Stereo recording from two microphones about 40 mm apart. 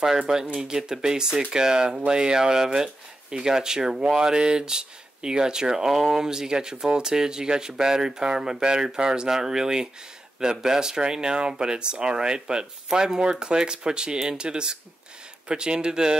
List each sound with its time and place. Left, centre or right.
0.3 s speech: centre